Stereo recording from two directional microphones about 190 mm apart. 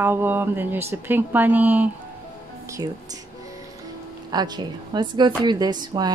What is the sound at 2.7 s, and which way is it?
Speech, 20° right (ahead or behind).